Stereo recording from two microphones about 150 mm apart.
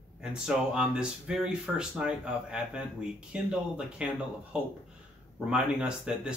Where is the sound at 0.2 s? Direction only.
5° right (ahead or behind).